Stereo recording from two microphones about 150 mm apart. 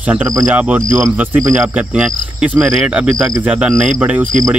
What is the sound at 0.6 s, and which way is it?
Speech, 15° right (ahead or behind).